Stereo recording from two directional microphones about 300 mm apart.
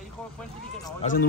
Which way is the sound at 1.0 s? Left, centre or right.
Left.